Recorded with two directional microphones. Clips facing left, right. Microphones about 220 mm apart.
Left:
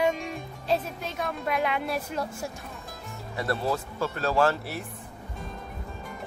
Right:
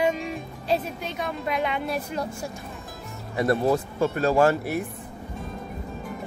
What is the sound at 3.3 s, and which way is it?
Speech, 20° right (ahead or behind).